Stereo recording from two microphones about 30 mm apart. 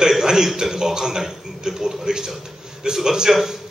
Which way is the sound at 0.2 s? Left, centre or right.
Right.